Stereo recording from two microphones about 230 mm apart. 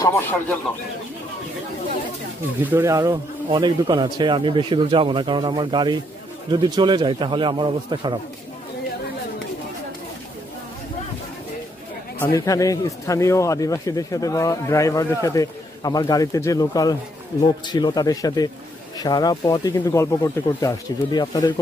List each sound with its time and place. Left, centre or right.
0.0 s speech: centre
2.6 s speech: centre
12.4 s speech: centre